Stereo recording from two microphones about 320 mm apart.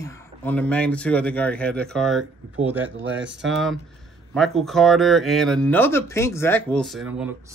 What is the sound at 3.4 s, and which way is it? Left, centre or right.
Speech, centre.